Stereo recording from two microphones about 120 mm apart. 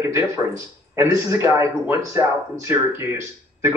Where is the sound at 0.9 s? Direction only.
25° right (ahead or behind).